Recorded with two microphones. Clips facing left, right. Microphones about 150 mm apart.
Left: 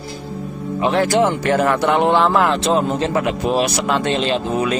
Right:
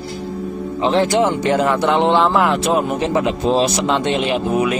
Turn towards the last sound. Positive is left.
turn(degrees=-15)  # may be behind; listen again after turning